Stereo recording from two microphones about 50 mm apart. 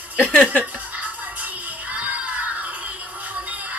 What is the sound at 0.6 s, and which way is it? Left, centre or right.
Music, right.